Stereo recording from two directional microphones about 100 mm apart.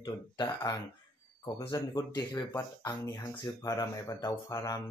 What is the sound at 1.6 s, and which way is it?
Speech, 40° left (ahead or behind).